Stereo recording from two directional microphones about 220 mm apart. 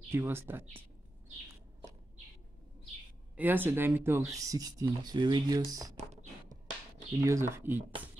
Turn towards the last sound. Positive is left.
turn(degrees=-10)  # may be behind; listen again after turning